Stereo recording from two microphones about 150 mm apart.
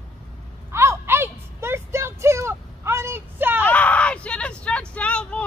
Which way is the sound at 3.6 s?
10° left (ahead or behind).